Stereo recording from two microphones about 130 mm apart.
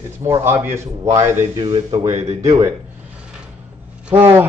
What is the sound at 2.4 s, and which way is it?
Speech, 25° right (ahead or behind).